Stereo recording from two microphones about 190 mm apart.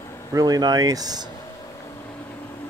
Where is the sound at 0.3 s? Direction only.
20° right (ahead or behind).